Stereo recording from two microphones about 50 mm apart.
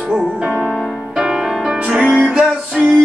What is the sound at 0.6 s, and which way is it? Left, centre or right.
Music, centre.